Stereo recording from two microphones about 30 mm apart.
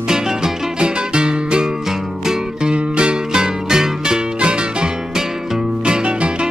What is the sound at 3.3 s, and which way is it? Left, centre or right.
Music, right.